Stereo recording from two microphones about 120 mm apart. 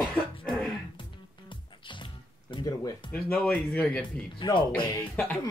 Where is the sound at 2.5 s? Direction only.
35° left (ahead or behind).